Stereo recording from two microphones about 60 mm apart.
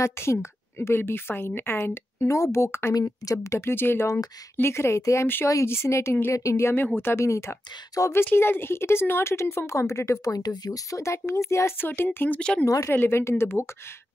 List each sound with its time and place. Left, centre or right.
0.0 s speech: left
2.1 s a woman's voice: left
2.9 s speech: left
3.4 s a woman's voice: left
6.3 s speech: left
6.6 s speech: left
7.0 s a woman's voice: left
8.0 s speech: left
8.4 s a woman's voice: left
10.2 s speech: left
11.8 s speech: left
12.4 s speech: centre
12.6 s speech: left
13.0 s a woman's voice: left